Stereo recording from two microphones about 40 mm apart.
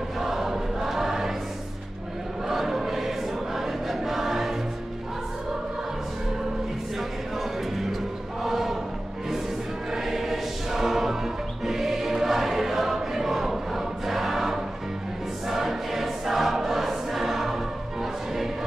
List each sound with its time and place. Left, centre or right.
0.2 s choir: centre
2.4 s choir: centre
7.0 s music: centre
8.4 s a sound: centre
9.8 s music: centre
15.4 s choir: centre